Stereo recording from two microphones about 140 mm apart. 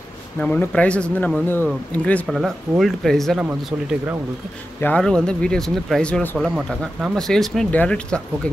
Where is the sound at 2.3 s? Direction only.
Centre (ahead or behind).